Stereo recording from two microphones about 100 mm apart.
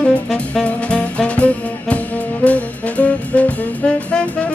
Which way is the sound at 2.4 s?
15° left (ahead or behind).